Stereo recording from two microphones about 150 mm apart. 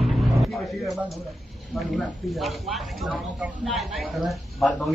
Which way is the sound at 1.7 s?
Centre (ahead or behind).